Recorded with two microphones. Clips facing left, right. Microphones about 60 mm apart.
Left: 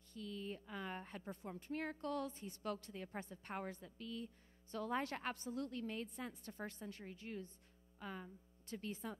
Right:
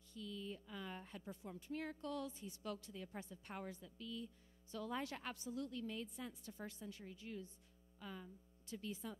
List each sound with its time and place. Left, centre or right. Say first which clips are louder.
0.1 s a woman's voice: left 2 dB; left